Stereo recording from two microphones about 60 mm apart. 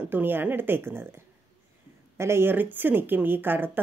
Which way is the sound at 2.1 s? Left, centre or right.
Right.